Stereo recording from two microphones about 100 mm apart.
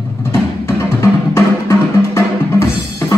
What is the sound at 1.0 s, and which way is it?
Music, 25° left (ahead or behind).